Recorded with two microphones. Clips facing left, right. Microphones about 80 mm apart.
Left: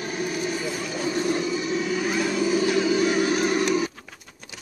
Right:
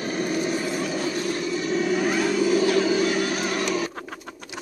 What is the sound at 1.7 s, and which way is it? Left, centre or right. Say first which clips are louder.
Vehicle: right 2 dB; centre.